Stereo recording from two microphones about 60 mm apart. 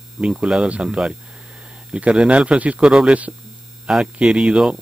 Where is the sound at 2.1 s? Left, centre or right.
Centre.